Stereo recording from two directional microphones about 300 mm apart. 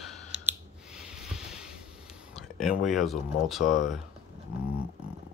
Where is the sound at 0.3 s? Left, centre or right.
Centre.